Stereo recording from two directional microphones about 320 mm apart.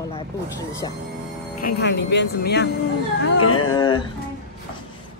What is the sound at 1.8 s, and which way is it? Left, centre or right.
Speech, left.